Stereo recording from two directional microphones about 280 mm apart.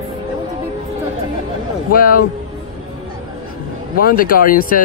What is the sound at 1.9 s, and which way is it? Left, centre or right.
Speech, left.